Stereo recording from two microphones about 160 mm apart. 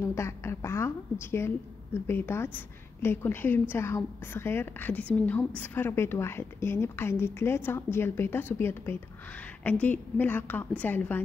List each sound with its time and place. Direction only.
0.0 s speech: 15° left (ahead or behind)
2.0 s a woman's voice: 15° left (ahead or behind)